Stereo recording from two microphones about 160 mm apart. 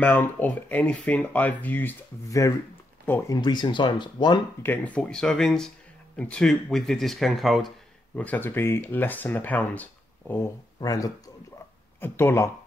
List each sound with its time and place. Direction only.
0.0 s speech: 10° left (ahead or behind); by 4.4 s 30° left (ahead or behind)
4.6 s speech: 10° left (ahead or behind)
8.2 s speech: 10° left (ahead or behind)
10.8 s speech: 20° left (ahead or behind)